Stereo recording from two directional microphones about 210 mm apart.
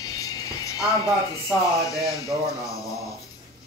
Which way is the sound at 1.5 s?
15° left (ahead or behind).